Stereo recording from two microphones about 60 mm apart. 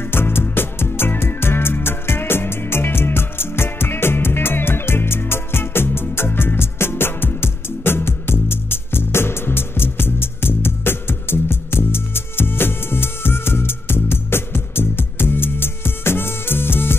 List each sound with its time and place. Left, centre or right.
0.0 s music: left